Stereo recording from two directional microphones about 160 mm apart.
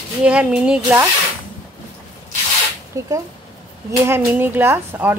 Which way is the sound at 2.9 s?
20° right (ahead or behind).